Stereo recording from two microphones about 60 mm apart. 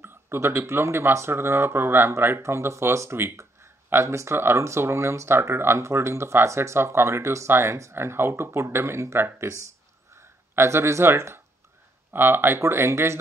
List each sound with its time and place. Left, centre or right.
0.0 s speech: right
10.1 s a sound: right
12.1 s speech: right